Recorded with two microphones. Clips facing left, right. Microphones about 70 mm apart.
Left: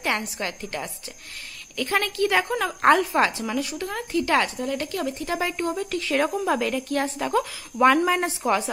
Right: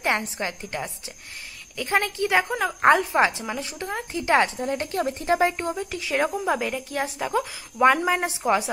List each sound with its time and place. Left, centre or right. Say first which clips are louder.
0.0 s a woman's voice: right 1 dB; right